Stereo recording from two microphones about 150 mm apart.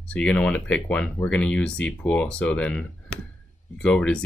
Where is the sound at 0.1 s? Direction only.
10° left (ahead or behind).